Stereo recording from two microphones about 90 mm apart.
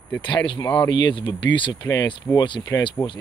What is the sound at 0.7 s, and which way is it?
Speech, 55° left (ahead or behind).